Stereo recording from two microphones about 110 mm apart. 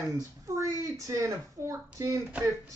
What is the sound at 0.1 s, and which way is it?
A woman's voice, 30° right (ahead or behind).